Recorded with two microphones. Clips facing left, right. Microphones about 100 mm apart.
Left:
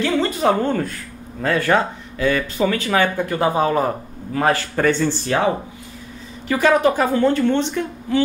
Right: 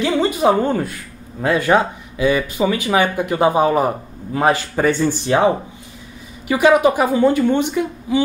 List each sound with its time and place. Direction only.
0.0 s speech: 15° right (ahead or behind)